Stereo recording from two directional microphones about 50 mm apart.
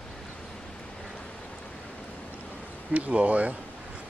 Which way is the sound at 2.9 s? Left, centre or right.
Right.